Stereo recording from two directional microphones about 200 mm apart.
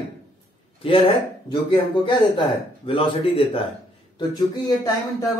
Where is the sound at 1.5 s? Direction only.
25° left (ahead or behind).